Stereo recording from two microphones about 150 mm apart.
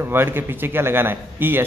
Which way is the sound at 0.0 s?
15° right (ahead or behind).